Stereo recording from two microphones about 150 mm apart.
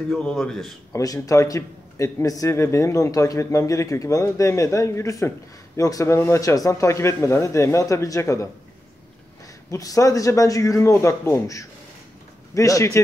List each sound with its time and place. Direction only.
0.1 s a man's voice: 5° left (ahead or behind)
0.9 s a man's voice: 25° left (ahead or behind)
9.7 s a man's voice: 25° left (ahead or behind)